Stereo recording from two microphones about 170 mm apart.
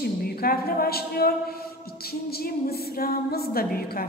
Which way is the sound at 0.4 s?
60° left (ahead or behind).